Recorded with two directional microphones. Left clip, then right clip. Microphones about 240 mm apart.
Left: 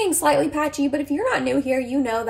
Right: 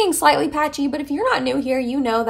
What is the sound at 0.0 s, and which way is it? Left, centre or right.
A woman's voice, centre.